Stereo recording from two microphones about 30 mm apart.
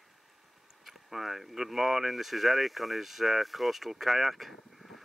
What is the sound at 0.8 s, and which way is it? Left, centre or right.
Speech, centre.